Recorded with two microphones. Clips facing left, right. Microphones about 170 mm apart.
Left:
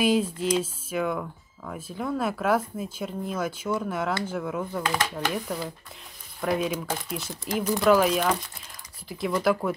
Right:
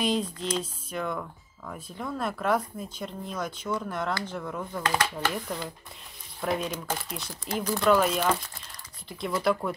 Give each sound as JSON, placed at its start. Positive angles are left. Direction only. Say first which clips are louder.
{"t": 0.0, "sound": "speech", "louder": "left 5 dB", "side_deg": 5}